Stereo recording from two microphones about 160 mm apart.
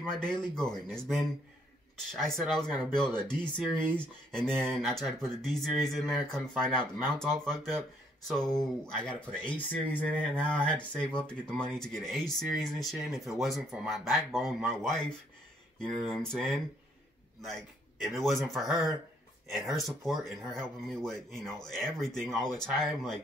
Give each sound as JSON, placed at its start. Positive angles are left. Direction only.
{"t": 0.1, "sound": "speech", "side_deg": 5}